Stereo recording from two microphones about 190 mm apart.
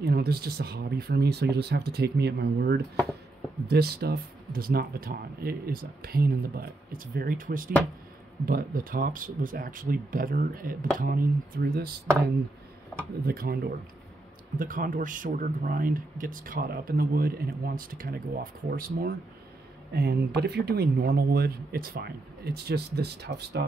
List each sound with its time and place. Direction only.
0.0 s speech: 55° right (ahead or behind)
13.3 s speech: 55° right (ahead or behind)